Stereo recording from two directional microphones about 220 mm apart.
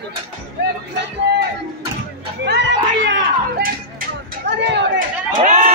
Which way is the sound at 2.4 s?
50° right (ahead or behind).